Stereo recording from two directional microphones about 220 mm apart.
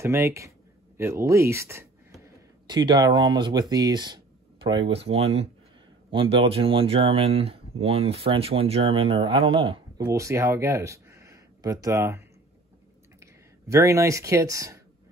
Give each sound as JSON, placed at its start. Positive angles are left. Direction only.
{"t": 0.0, "sound": "speech", "side_deg": -10}
{"t": 13.2, "sound": "speech", "side_deg": -15}